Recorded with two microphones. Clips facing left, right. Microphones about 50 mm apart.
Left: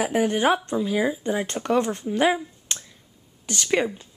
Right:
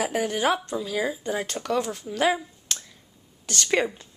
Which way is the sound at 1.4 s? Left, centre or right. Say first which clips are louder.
Left 5 dB; left.